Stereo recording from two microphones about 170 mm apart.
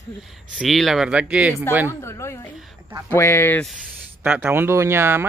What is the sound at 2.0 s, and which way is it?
A woman's voice, 15° left (ahead or behind).